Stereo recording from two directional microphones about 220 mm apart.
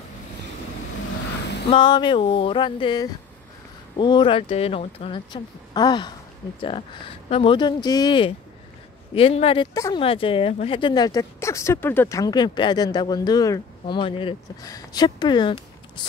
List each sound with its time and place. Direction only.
1.7 s speech: 20° left (ahead or behind)
9.8 s speech: 15° left (ahead or behind)